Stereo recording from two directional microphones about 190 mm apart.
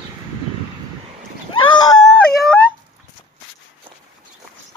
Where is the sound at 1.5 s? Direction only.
20° left (ahead or behind).